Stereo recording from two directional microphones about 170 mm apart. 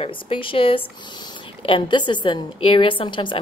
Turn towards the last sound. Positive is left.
turn(degrees=30)  # may be behind; listen again after turning